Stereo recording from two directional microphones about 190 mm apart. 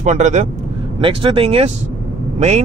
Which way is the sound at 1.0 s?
25° right (ahead or behind).